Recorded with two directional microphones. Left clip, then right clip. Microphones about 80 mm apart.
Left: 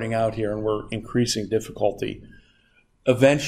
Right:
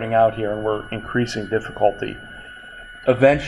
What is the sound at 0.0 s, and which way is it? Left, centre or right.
Speech, left.